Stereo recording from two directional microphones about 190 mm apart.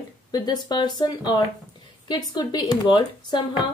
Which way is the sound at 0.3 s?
20° left (ahead or behind).